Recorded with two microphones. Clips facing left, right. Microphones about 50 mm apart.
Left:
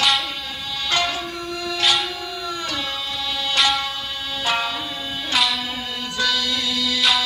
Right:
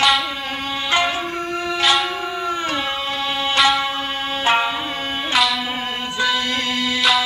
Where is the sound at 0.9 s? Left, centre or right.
Right.